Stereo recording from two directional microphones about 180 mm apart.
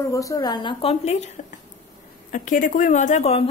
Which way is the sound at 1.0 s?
40° left (ahead or behind).